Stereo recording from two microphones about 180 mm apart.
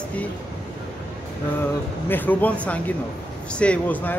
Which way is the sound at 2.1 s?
10° left (ahead or behind).